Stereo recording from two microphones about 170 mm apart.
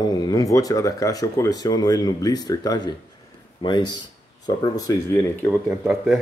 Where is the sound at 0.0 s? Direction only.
25° left (ahead or behind).